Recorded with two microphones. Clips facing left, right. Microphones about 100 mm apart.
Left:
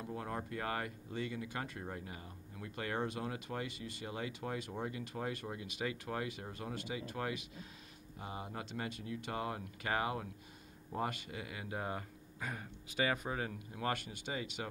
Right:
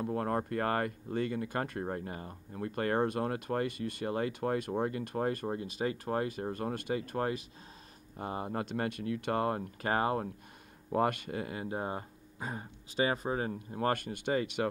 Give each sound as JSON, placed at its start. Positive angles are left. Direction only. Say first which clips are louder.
{"t": 0.0, "sound": "speech", "louder": "right 9 dB", "side_deg": -55}
{"t": 8.2, "sound": "speech", "louder": "right 9 dB", "side_deg": -50}
{"t": 10.9, "sound": "speech", "louder": "right 9 dB", "side_deg": -60}